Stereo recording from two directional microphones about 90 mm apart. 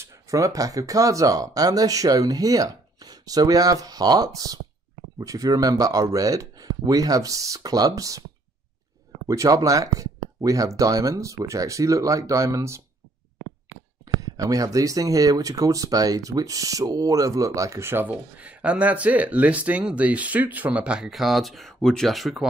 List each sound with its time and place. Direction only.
0.0 s speech: 35° right (ahead or behind)
9.3 s speech: 35° right (ahead or behind)
14.0 s speech: 40° right (ahead or behind); by 21.1 s 10° right (ahead or behind)
21.1 s speech: centre (ahead or behind)